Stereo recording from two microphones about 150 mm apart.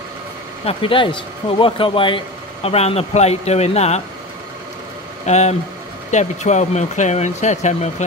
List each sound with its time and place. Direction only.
0.7 s speech: 35° left (ahead or behind)
5.2 s speech: 50° left (ahead or behind)